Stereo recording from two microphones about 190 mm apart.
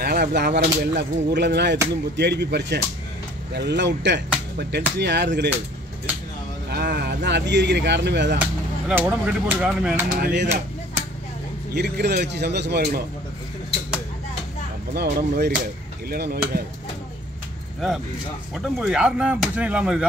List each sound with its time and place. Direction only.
0.0 s speech: 55° right (ahead or behind)
6.7 s speech: 55° right (ahead or behind)
8.4 s speech: 5° right (ahead or behind)
10.1 s speech: 65° right (ahead or behind)
11.7 s speech: 60° right (ahead or behind)
15.0 s speech: 60° right (ahead or behind)
17.7 s speech: centre (ahead or behind)